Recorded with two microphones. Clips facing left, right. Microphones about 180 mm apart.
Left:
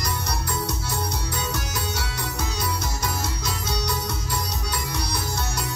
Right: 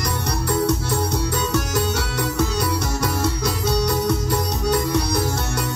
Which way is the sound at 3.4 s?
55° right (ahead or behind).